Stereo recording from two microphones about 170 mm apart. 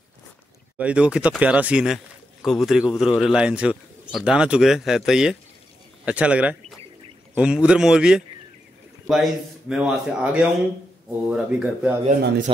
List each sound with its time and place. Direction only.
0.7 s a man's voice: 5° right (ahead or behind)
12.5 s speech: 30° right (ahead or behind)